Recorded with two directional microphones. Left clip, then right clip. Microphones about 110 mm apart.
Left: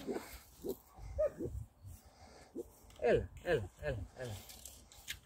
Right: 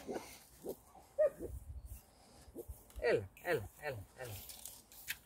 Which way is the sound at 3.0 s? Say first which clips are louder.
Left 2 dB; 45° right (ahead or behind).